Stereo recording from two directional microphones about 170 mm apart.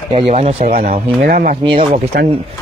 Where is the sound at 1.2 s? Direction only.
55° right (ahead or behind).